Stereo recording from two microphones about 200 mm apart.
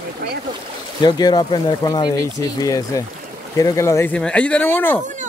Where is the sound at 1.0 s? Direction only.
20° left (ahead or behind).